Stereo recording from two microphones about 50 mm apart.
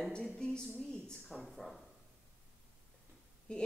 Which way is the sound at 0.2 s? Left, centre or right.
Centre.